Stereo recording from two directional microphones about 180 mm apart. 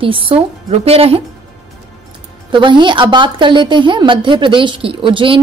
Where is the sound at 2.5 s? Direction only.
25° right (ahead or behind).